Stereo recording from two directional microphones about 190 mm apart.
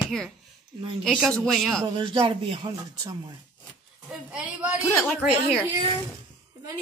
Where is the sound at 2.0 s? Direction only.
25° right (ahead or behind).